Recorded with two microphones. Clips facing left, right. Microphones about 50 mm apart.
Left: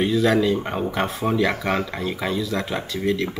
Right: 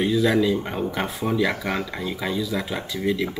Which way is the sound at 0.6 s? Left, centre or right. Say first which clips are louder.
Left 2 dB; centre.